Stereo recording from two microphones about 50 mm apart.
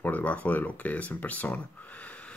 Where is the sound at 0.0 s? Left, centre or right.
Left.